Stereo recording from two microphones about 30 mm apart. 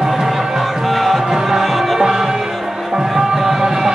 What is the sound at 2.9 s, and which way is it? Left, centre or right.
Music, centre.